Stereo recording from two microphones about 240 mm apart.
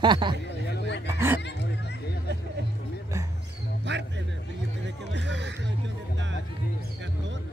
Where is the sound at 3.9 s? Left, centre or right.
Right.